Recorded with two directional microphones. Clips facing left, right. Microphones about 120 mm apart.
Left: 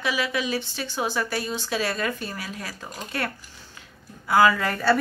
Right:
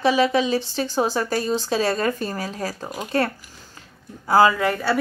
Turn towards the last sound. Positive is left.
turn(degrees=-20)  # may be behind; listen again after turning